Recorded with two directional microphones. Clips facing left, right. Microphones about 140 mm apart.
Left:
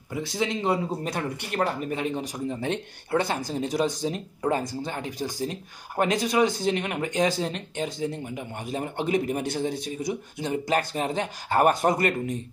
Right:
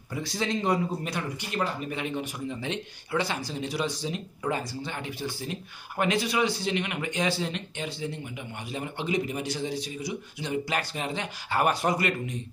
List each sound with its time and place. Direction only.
0.1 s speech: 20° left (ahead or behind)
1.5 s speech: 55° left (ahead or behind)
1.9 s speech: 35° left (ahead or behind)